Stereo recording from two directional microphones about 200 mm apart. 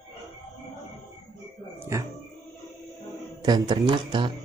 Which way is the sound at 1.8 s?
15° right (ahead or behind).